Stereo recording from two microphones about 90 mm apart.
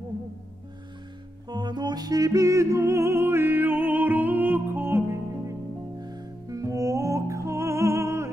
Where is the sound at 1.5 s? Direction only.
55° right (ahead or behind); by 5.5 s 30° right (ahead or behind).